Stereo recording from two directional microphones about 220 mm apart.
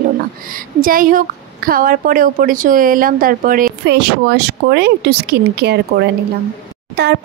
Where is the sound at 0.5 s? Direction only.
40° right (ahead or behind).